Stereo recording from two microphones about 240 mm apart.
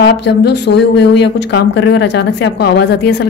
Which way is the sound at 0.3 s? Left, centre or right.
Left.